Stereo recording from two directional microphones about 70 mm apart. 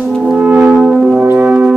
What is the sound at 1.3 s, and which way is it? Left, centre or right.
Brass instrument, centre.